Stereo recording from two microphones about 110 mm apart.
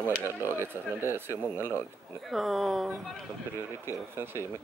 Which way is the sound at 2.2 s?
Centre (ahead or behind).